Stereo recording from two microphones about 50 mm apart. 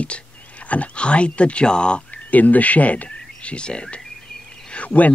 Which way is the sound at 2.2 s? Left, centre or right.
Left.